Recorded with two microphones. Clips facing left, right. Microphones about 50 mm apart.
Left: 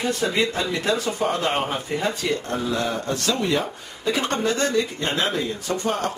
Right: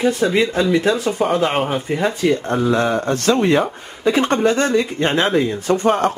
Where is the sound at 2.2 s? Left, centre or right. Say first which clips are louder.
Right 8 dB; right.